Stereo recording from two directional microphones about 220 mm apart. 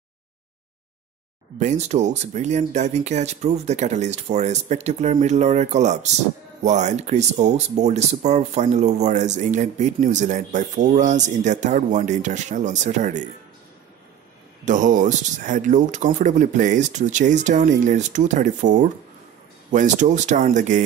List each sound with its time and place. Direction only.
1.6 s speech: 30° right (ahead or behind)
14.6 s speech: 35° right (ahead or behind)